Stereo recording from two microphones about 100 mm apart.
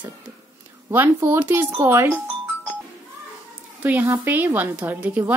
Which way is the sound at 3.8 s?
15° right (ahead or behind).